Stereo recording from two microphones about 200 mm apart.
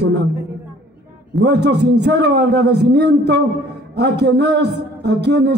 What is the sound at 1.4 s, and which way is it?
A man's voice, 55° right (ahead or behind).